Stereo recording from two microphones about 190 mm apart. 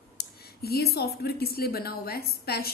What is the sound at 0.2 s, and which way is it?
A woman's voice, 55° left (ahead or behind).